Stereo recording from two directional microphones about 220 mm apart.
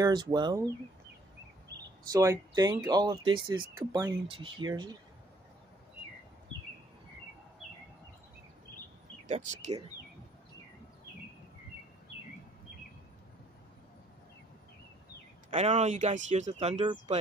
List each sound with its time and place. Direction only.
0.0 s speech: 20° right (ahead or behind)
2.1 s speech: 15° right (ahead or behind)
9.3 s speech: 35° right (ahead or behind)
15.5 s speech: 30° right (ahead or behind)